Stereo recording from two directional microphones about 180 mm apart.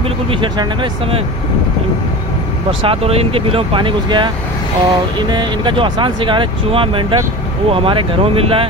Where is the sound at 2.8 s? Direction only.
30° right (ahead or behind).